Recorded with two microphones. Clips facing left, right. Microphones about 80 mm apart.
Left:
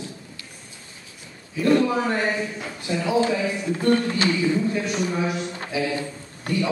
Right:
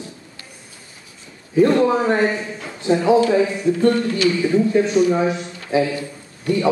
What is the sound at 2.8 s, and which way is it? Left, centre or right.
Speech, right.